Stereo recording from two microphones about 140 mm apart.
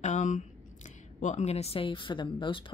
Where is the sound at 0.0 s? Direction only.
60° left (ahead or behind).